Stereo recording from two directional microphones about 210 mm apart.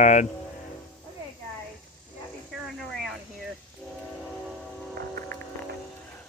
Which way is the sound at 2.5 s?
Centre (ahead or behind).